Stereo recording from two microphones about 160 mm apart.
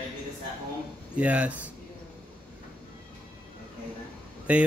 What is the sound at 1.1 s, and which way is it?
Mantra, 10° right (ahead or behind).